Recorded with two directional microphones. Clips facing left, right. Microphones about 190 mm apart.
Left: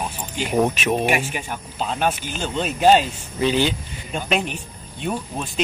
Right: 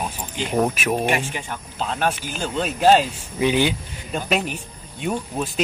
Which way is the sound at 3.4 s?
15° right (ahead or behind).